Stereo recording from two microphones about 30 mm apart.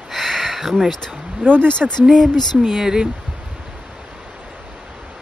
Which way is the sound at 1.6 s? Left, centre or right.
Left.